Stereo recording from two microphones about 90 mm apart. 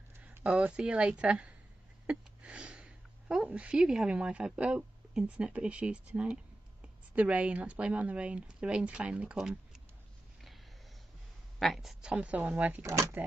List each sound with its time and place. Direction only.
0.4 s speech: 15° right (ahead or behind)
11.6 s speech: centre (ahead or behind); by 12.8 s 20° right (ahead or behind)
12.8 s speech: 35° right (ahead or behind)